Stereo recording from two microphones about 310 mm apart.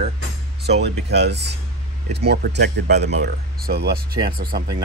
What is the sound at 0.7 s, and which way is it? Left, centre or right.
Speech, right.